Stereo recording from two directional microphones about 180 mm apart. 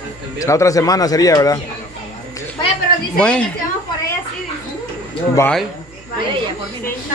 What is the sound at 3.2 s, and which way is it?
Speech, 5° left (ahead or behind).